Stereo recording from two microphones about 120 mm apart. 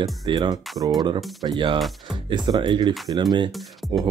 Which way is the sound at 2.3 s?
40° right (ahead or behind).